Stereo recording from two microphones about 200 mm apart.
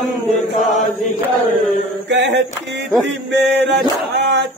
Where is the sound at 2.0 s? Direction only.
60° right (ahead or behind).